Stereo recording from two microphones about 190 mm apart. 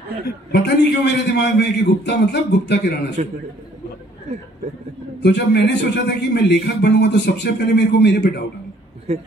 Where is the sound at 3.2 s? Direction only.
40° right (ahead or behind).